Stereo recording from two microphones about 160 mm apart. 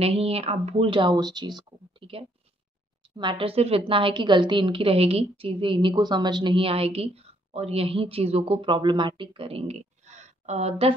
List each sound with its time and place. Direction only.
0.0 s a woman's voice: 40° right (ahead or behind)